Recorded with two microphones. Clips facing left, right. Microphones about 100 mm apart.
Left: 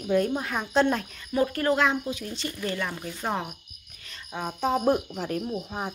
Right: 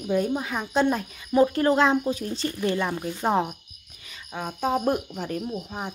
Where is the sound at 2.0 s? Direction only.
40° right (ahead or behind).